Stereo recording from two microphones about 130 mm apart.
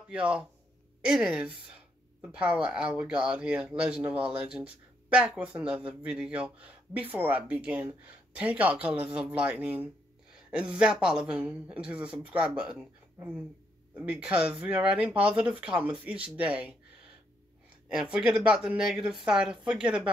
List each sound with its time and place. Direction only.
0.1 s speech: 10° right (ahead or behind)
13.9 s speech: 10° right (ahead or behind)
17.8 s speech: 10° right (ahead or behind)